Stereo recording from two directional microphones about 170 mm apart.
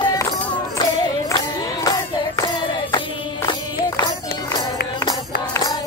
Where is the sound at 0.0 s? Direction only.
20° left (ahead or behind).